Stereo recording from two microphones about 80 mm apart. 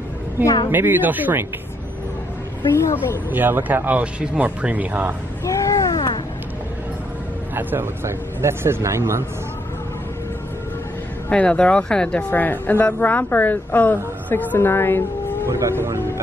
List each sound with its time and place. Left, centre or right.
0.7 s speech: right
2.8 s speech: left
3.3 s speech: right
5.4 s a sound: left
5.9 s a sound: left
7.5 s a man's voice: right
11.2 s speech: centre
12.3 s a woman's voice: left